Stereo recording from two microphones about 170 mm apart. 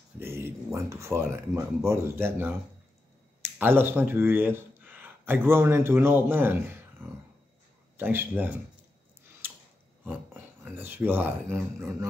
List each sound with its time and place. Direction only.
0.2 s speech: 15° right (ahead or behind)
9.4 s a sound: 10° right (ahead or behind)
10.0 s filing: 10° right (ahead or behind)
11.5 s speech: 15° right (ahead or behind)